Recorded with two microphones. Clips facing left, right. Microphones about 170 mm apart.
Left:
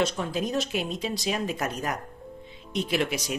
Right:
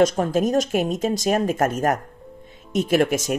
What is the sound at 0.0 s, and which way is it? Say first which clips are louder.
Speech: right 9 dB; 45° right (ahead or behind).